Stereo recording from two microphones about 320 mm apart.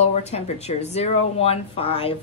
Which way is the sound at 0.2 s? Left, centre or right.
Centre.